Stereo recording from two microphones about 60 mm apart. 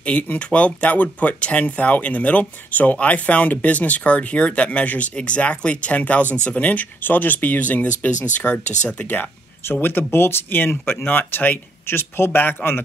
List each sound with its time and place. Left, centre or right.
0.0 s speech: left